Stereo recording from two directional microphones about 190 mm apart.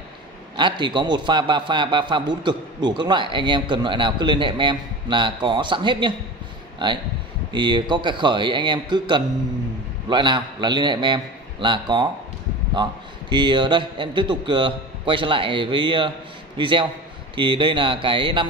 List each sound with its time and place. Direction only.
0.6 s a man's voice: 25° right (ahead or behind)
13.3 s a man's voice: 25° right (ahead or behind)